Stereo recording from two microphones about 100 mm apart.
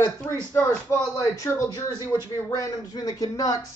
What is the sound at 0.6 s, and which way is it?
Speech, 30° left (ahead or behind).